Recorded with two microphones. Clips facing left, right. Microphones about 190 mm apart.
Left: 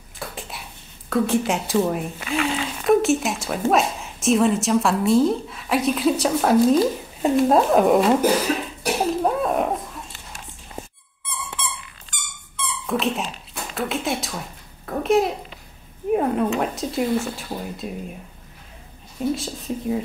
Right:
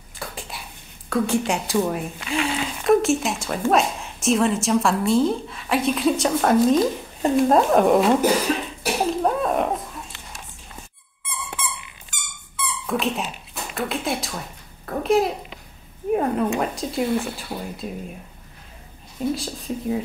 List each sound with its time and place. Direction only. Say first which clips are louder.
0.2 s a sound: left 1 dB; centre (ahead or behind)
1.1 s a woman's voice: left 1 dB; centre (ahead or behind)
12.1 s dog: left 1 dB; 5° right (ahead or behind)
16.1 s zipper: left 1 dB; centre (ahead or behind)
16.4 s a woman's voice: left 1 dB; centre (ahead or behind)
19.3 s a woman's voice: left 1 dB; centre (ahead or behind)